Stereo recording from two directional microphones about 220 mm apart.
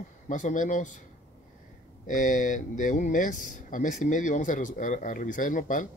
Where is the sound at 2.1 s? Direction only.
35° left (ahead or behind).